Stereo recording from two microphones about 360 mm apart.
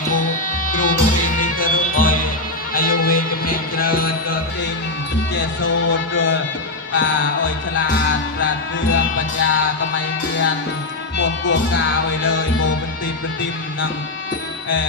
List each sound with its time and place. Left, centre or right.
0.1 s music: left
5.6 s music: left
8.9 s music: left
11.2 s music: left